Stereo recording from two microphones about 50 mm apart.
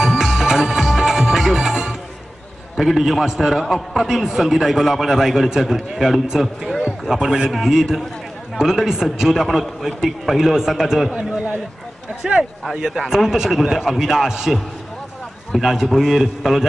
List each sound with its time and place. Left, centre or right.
0.0 s music: centre
2.8 s a man's voice: centre
11.1 s a man's voice: centre